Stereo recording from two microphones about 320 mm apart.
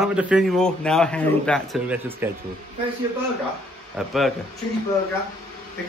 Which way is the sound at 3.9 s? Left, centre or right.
Centre.